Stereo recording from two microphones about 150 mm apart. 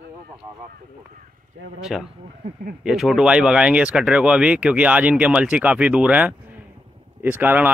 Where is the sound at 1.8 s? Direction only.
Centre (ahead or behind).